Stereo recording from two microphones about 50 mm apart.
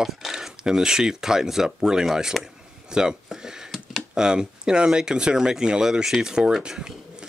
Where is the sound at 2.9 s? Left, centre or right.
Centre.